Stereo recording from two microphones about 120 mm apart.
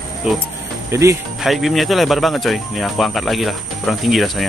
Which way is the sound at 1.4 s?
Centre (ahead or behind).